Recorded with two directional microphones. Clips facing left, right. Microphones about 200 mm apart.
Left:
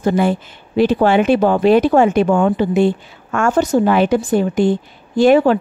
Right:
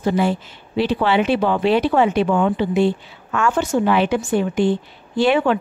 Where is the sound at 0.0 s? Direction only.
50° left (ahead or behind).